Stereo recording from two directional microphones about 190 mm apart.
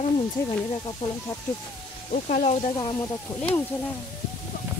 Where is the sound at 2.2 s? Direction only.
40° left (ahead or behind).